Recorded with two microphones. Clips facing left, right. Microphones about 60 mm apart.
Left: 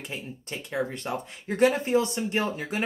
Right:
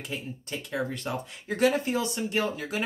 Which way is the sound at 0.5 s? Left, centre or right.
Left.